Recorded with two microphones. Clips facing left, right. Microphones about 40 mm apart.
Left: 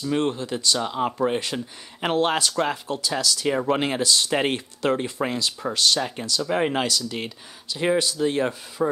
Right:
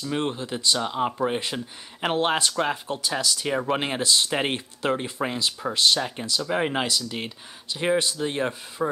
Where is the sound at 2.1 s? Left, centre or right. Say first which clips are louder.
Left 2 dB; right.